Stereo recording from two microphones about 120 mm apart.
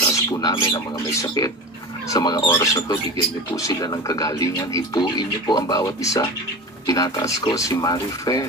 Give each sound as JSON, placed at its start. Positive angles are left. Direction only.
{"t": 0.1, "sound": "speech", "side_deg": 30}